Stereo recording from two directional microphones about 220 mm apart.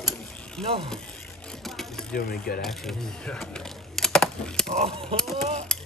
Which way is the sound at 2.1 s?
40° left (ahead or behind).